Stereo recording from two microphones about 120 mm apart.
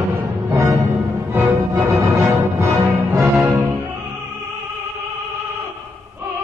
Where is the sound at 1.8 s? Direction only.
25° right (ahead or behind).